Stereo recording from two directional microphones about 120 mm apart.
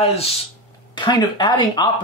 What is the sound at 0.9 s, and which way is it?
Speech, 40° left (ahead or behind).